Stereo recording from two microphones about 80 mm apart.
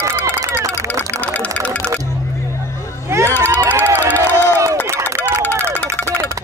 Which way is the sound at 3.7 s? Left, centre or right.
Right.